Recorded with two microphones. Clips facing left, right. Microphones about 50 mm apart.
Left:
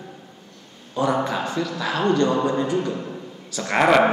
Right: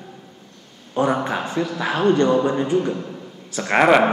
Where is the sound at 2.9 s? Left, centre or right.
Centre.